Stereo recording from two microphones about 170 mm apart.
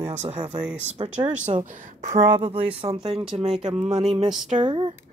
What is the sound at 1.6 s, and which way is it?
Speech, 50° right (ahead or behind).